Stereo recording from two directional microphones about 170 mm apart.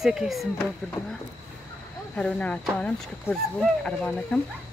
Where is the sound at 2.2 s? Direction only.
5° left (ahead or behind).